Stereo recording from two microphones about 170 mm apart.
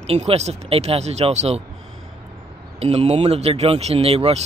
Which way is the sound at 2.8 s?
35° right (ahead or behind).